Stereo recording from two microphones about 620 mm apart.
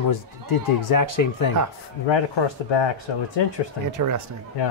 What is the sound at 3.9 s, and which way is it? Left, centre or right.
Speech, right.